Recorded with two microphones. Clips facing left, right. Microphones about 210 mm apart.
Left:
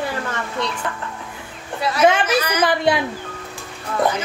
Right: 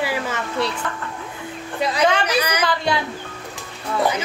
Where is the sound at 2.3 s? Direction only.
15° right (ahead or behind).